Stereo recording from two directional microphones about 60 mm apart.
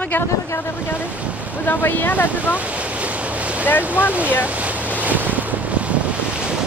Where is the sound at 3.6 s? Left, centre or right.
Left.